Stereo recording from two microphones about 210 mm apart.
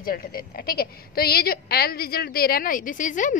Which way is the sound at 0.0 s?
45° left (ahead or behind).